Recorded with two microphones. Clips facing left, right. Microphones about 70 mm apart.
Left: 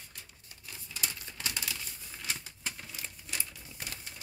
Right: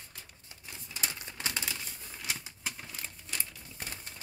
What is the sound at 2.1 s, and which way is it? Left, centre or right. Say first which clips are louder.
Typewriter: right 1 dB; centre.